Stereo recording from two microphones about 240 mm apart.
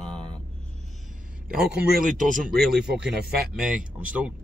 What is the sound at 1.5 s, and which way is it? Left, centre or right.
A man's voice, centre.